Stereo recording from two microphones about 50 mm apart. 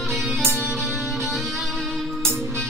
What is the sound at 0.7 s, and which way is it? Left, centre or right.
Music, centre.